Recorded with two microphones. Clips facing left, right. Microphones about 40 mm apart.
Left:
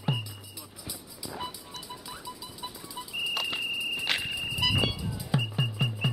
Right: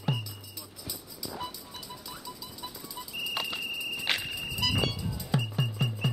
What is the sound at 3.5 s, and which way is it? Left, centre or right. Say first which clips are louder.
Insect: left 3 dB; centre.